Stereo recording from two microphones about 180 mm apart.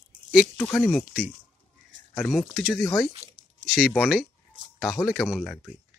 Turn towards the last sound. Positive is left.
turn(degrees=0)  # may be behind; listen again after turning